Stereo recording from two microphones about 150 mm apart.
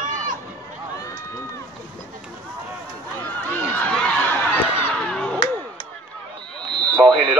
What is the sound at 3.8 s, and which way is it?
Snicker, 5° left (ahead or behind).